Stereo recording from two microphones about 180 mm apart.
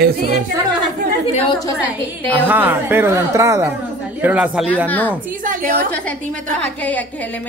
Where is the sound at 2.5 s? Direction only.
10° right (ahead or behind).